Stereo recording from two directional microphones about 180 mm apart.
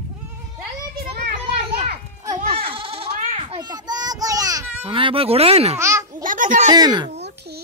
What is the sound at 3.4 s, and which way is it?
Children playing, 25° right (ahead or behind).